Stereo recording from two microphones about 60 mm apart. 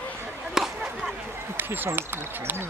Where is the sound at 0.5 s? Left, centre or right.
Centre.